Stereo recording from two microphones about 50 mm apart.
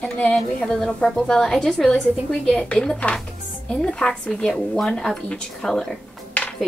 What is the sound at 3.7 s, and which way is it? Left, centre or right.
A woman's voice, left.